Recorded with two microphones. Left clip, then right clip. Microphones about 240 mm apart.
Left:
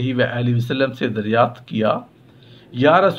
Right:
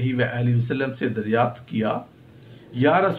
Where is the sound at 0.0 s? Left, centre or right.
Left.